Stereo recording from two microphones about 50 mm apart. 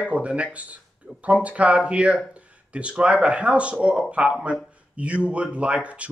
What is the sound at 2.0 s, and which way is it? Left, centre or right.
Speech, right.